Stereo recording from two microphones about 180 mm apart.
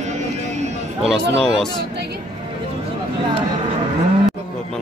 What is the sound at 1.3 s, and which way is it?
Speech, centre (ahead or behind).